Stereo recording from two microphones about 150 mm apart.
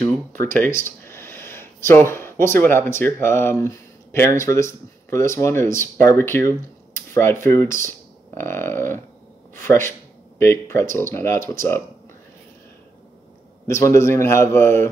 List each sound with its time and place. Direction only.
0.3 s a man's voice: 15° left (ahead or behind)
7.0 s a sound: 15° left (ahead or behind)
7.4 s a man's voice: 20° left (ahead or behind)
13.7 s a man's voice: 20° left (ahead or behind)